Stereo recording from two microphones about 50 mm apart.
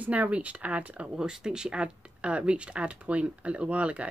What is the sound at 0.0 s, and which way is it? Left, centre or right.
Speech, right.